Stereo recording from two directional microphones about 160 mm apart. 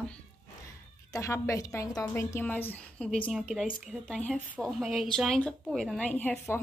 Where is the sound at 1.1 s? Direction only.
20° left (ahead or behind).